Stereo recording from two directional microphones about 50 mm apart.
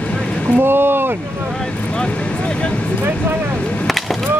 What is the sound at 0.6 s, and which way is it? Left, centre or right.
Speech, right.